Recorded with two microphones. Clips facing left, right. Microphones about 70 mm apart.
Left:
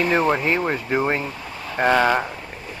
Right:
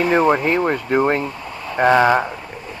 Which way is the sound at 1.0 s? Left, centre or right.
Right.